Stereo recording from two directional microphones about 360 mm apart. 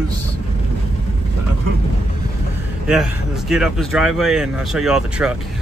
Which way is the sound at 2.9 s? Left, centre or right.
Centre.